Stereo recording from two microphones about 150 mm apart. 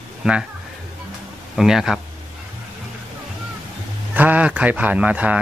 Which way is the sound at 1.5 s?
Centre (ahead or behind).